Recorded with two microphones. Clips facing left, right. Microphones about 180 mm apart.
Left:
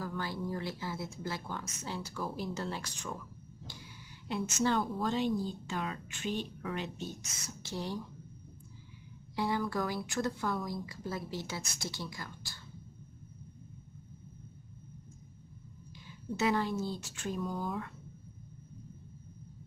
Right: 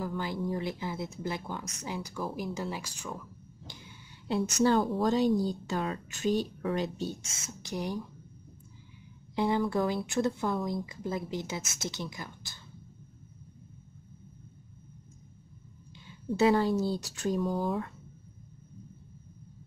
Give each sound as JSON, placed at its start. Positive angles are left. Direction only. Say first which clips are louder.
{"t": 0.0, "sound": "speech", "louder": "right 4 dB", "side_deg": -20}
{"t": 4.3, "sound": "a woman's voice", "louder": "right 6 dB", "side_deg": -35}
{"t": 9.3, "sound": "speech", "louder": "right 5 dB", "side_deg": -20}
{"t": 16.3, "sound": "a woman's voice", "louder": "right 7 dB", "side_deg": -35}